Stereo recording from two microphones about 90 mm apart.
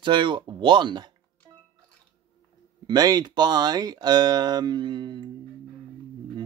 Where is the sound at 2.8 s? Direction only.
45° right (ahead or behind).